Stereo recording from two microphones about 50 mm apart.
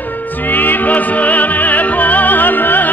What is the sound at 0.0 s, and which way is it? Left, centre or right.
Music, left.